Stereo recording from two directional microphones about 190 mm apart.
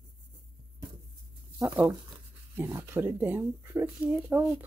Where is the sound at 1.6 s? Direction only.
15° right (ahead or behind).